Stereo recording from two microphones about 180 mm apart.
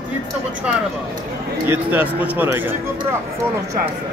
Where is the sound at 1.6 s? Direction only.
10° right (ahead or behind).